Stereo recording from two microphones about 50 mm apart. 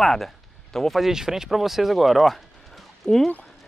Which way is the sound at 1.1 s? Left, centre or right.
Centre.